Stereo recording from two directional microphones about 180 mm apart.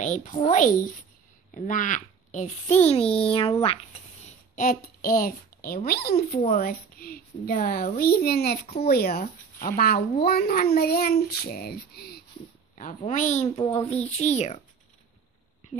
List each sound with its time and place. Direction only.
0.0 s a child's voice: 45° left (ahead or behind)
4.6 s a child's voice: 55° left (ahead or behind)
12.7 s a woman's voice: 45° left (ahead or behind)